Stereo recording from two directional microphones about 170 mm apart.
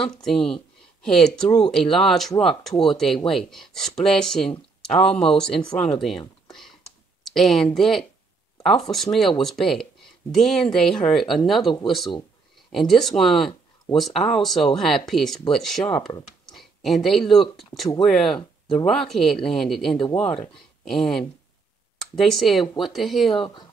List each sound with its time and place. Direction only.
0.0 s speech: 5° left (ahead or behind)
7.2 s speech: centre (ahead or behind)
12.7 s speech: centre (ahead or behind)
23.3 s speech: 30° left (ahead or behind)